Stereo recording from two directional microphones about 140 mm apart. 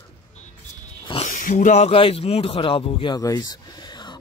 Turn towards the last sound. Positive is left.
turn(degrees=30)  # may be behind; listen again after turning